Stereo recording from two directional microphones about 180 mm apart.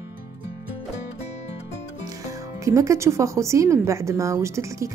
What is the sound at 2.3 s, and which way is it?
Speech, 15° right (ahead or behind).